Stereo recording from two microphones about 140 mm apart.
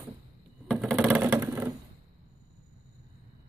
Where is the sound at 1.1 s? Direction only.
15° right (ahead or behind).